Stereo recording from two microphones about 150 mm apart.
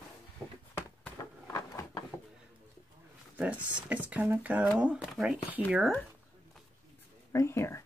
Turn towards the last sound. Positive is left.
turn(degrees=20)  # may be behind; listen again after turning